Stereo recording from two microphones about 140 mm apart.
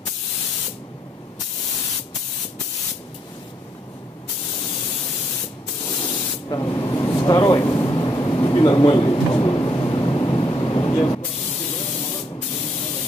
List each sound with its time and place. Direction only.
6.5 s vehicle: 25° left (ahead or behind)